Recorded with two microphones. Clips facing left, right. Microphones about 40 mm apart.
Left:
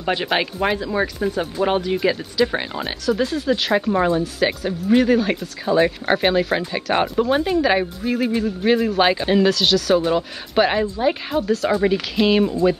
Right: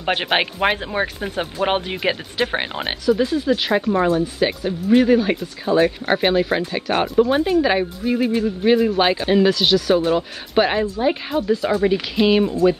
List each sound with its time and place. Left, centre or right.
0.0 s speech: right
3.1 s speech: centre